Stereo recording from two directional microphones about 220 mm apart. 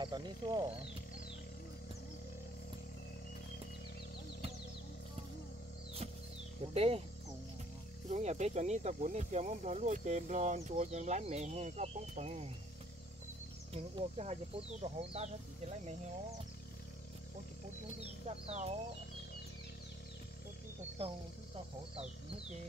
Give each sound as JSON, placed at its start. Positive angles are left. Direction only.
{"t": 0.0, "sound": "speech", "side_deg": -20}
{"t": 6.7, "sound": "speech", "side_deg": -25}
{"t": 8.1, "sound": "speech", "side_deg": -30}
{"t": 13.9, "sound": "speech", "side_deg": -30}
{"t": 18.5, "sound": "speech", "side_deg": -30}